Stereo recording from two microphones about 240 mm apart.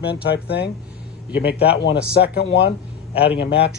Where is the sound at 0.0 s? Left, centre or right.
Left.